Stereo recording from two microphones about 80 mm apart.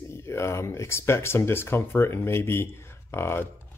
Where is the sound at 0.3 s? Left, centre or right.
Left.